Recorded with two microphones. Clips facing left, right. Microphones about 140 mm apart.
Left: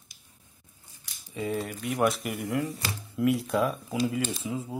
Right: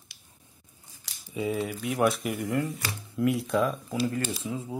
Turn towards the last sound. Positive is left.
turn(degrees=0)  # may be behind; listen again after turning